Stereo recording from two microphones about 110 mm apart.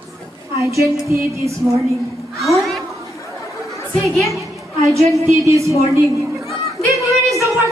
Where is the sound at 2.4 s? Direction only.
Centre (ahead or behind).